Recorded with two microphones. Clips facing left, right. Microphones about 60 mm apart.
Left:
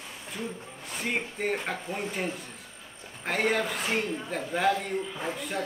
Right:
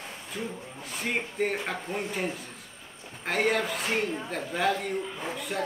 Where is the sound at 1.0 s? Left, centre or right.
Centre.